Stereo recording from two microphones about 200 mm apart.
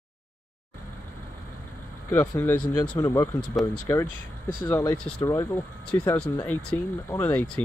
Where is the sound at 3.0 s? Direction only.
15° left (ahead or behind).